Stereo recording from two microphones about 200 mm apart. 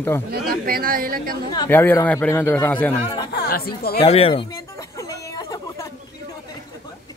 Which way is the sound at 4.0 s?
30° left (ahead or behind).